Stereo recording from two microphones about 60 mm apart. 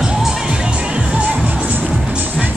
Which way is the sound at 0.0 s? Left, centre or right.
Centre.